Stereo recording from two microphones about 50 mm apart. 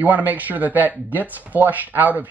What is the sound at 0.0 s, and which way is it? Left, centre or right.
Speech, right.